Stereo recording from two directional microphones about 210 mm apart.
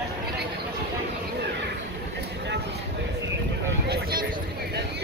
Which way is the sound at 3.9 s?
45° right (ahead or behind).